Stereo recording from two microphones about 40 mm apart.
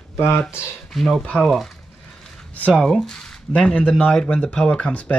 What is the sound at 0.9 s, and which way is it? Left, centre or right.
Speech, centre.